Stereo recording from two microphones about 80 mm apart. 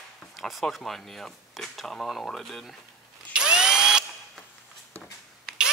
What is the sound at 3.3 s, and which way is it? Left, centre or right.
Drill, centre.